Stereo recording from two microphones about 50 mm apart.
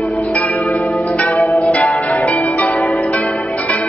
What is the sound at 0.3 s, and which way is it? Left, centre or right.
Music, left.